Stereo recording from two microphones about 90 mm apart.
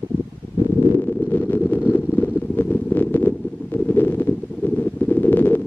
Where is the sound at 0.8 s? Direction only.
35° left (ahead or behind).